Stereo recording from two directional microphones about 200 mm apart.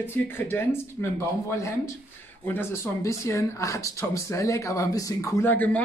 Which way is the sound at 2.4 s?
10° left (ahead or behind).